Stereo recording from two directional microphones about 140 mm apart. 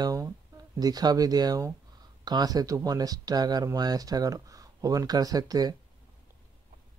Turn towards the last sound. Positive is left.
turn(degrees=-25)  # may be behind; listen again after turning